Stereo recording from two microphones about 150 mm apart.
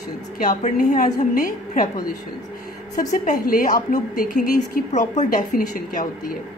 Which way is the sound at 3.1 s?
70° left (ahead or behind).